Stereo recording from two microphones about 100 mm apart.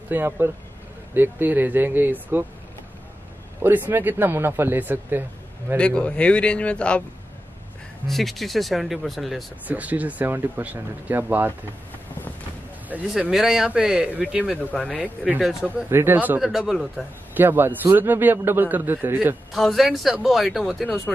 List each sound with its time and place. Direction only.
0.1 s a man's voice: 25° right (ahead or behind)
3.6 s a man's voice: 20° right (ahead or behind)
5.8 s speech: 10° left (ahead or behind)
8.1 s speech: centre (ahead or behind)
9.7 s speech: 15° right (ahead or behind)
13.2 s speech: 5° right (ahead or behind)
14.7 s speech: 10° left (ahead or behind)
15.9 s a man's voice: 20° right (ahead or behind)
16.3 s speech: 5° right (ahead or behind)
17.3 s a man's voice: 20° right (ahead or behind)
19.5 s speech: centre (ahead or behind)